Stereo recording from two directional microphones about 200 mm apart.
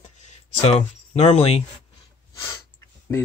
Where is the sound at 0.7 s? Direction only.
30° left (ahead or behind).